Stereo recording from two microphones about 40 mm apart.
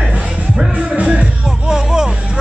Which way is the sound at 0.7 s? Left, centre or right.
Right.